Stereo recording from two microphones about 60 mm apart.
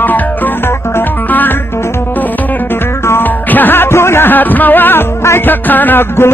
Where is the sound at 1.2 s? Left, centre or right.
Left.